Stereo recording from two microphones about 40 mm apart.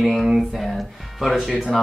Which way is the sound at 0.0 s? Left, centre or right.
Centre.